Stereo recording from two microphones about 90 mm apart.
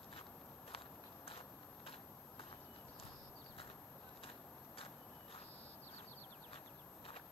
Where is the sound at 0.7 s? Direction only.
90° left.